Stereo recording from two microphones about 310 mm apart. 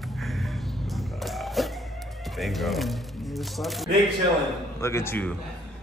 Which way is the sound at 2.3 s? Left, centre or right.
Centre.